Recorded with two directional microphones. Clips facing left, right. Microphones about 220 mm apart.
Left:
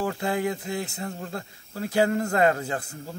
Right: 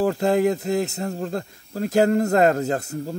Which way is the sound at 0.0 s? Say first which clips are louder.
Right 7 dB; 40° right (ahead or behind).